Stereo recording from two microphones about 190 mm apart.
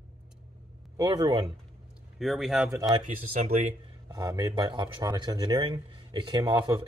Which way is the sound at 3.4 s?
40° right (ahead or behind).